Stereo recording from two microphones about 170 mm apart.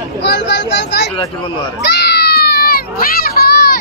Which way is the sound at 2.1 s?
75° left (ahead or behind).